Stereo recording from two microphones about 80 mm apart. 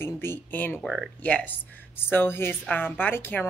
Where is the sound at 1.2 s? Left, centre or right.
Centre.